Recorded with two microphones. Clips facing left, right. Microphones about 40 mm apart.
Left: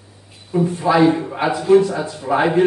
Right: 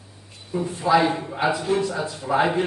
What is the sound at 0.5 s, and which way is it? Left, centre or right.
A man's voice, centre.